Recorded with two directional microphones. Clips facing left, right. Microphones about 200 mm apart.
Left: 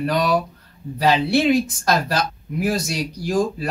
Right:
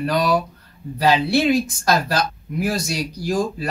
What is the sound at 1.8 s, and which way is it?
Speech, centre (ahead or behind).